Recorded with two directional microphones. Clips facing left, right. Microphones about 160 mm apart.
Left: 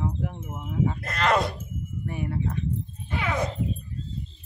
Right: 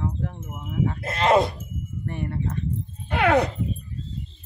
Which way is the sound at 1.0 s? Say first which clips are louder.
Right 6 dB; 25° right (ahead or behind).